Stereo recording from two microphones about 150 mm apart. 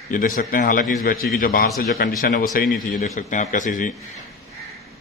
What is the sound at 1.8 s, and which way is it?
Speech, 90° left.